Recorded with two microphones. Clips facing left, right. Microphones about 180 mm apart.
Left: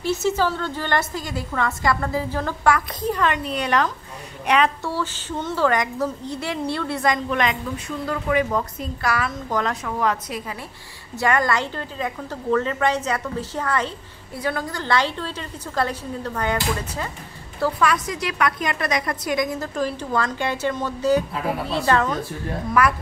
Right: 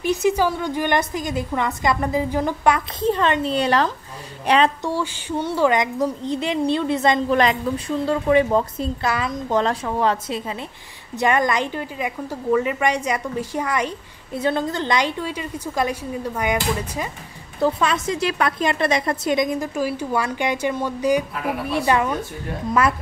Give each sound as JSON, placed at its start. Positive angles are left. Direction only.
{"t": 0.0, "sound": "a woman's voice", "side_deg": -15}
{"t": 4.8, "sound": "a woman's voice", "side_deg": -15}
{"t": 7.2, "sound": "a woman's voice", "side_deg": -35}
{"t": 22.7, "sound": "a woman's voice", "side_deg": -25}